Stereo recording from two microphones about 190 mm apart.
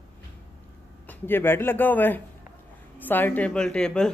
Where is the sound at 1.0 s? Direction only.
10° left (ahead or behind).